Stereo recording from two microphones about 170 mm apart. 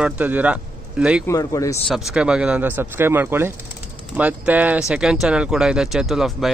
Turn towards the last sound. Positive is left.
turn(degrees=0)  # may be behind; listen again after turning